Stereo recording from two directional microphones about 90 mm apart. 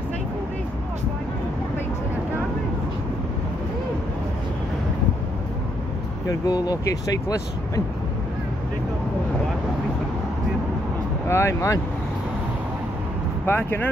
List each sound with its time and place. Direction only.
6.2 s speech: 45° left (ahead or behind)
11.2 s speech: 30° left (ahead or behind)
13.5 s speech: 25° left (ahead or behind)